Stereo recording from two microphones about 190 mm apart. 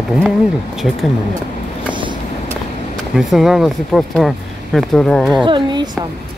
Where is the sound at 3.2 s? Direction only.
Centre (ahead or behind).